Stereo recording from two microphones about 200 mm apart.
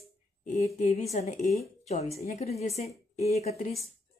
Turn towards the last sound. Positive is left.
turn(degrees=35)  # may be behind; listen again after turning